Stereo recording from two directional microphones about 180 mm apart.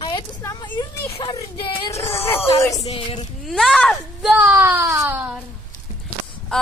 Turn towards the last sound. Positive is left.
turn(degrees=5)  # may be behind; listen again after turning